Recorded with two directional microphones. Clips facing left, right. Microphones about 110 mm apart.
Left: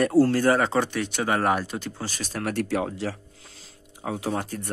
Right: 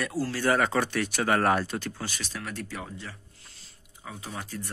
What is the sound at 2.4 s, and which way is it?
Speech, 75° left (ahead or behind).